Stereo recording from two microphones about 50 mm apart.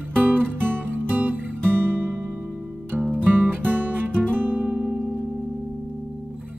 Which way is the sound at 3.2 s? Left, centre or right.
Right.